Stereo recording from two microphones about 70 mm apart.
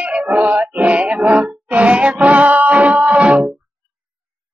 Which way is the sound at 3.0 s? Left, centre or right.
Centre.